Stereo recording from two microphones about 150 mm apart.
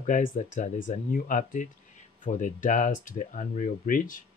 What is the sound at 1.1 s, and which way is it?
Speech, 65° left (ahead or behind).